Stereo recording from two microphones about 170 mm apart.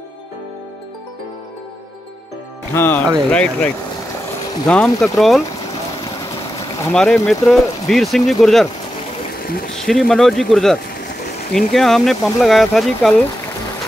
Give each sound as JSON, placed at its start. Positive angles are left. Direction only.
{"t": 2.7, "sound": "speech", "side_deg": 15}
{"t": 6.9, "sound": "speech", "side_deg": 5}
{"t": 9.3, "sound": "a sound", "side_deg": 65}
{"t": 9.8, "sound": "speech", "side_deg": 0}